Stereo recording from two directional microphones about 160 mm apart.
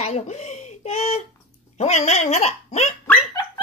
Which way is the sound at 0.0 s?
45° left (ahead or behind).